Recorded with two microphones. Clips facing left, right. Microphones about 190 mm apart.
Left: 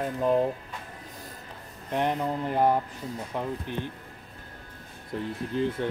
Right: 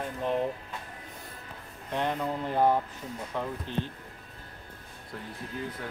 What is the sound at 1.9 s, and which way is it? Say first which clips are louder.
Mantra: left 3 dB; 15° left (ahead or behind).